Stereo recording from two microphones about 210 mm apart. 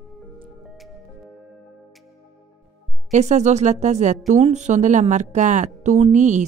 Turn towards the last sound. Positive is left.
turn(degrees=-35)  # may be behind; listen again after turning